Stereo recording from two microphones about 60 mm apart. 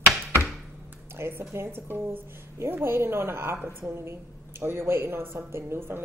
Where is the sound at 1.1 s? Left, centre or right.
Right.